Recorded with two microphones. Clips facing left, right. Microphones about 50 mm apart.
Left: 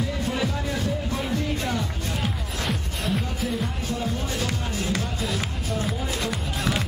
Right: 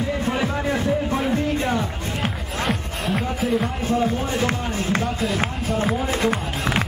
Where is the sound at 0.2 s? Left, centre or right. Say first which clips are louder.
Right 4 dB; right.